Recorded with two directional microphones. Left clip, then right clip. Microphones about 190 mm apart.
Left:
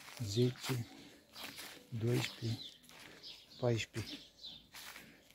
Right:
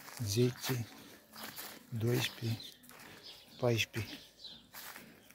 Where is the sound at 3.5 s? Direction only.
5° right (ahead or behind).